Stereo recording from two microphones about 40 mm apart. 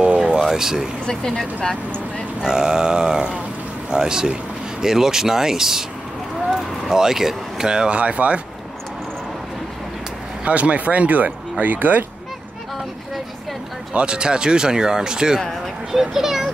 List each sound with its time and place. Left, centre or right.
0.0 s a sound: right
0.4 s a sound: centre
1.0 s speech: centre
2.4 s speech: centre
6.9 s speech: centre; by 8.4 s right
10.4 s speech: right
13.9 s speech: right
15.9 s speech: centre